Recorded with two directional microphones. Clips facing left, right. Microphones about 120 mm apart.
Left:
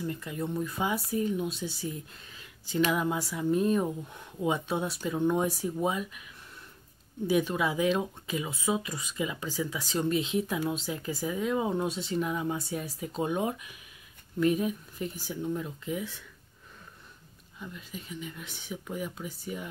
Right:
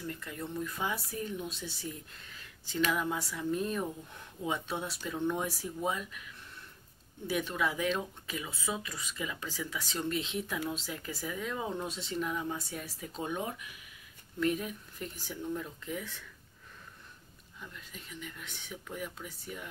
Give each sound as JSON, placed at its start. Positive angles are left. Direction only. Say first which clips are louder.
{"t": 0.0, "sound": "speech", "louder": "left 6 dB", "side_deg": 15}
{"t": 2.9, "sound": "speech", "louder": "left 4 dB", "side_deg": 15}
{"t": 7.2, "sound": "speech", "louder": "left 5 dB", "side_deg": 15}
{"t": 17.6, "sound": "speech", "louder": "left 6 dB", "side_deg": 10}